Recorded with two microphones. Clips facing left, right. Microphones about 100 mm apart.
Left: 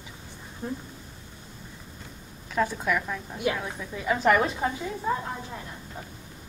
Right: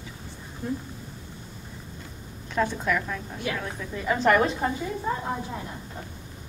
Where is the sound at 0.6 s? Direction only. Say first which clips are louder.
Right 3 dB; 30° left (ahead or behind).